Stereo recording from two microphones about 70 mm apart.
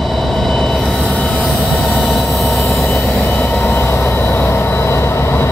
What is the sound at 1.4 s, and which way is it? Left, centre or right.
Train, centre.